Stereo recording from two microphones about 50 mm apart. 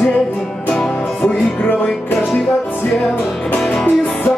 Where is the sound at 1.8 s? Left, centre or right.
Centre.